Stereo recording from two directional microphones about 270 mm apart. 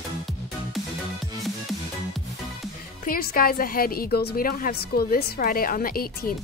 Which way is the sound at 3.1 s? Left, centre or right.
Left.